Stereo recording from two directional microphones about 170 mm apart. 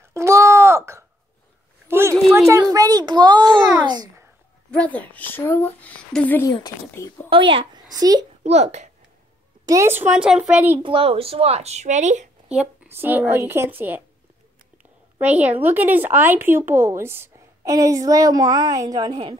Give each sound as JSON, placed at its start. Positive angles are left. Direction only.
{"t": 0.1, "sound": "a sound", "side_deg": -15}
{"t": 1.9, "sound": "a woman's voice", "side_deg": -15}
{"t": 4.6, "sound": "speech", "side_deg": 5}
{"t": 6.5, "sound": "speech", "side_deg": 25}
{"t": 7.2, "sound": "a woman's voice", "side_deg": -30}
{"t": 8.5, "sound": "speech", "side_deg": -40}
{"t": 9.7, "sound": "speech", "side_deg": -15}
{"t": 10.8, "sound": "speech", "side_deg": -35}
{"t": 12.4, "sound": "speech", "side_deg": -10}
{"t": 15.1, "sound": "a woman's voice", "side_deg": -10}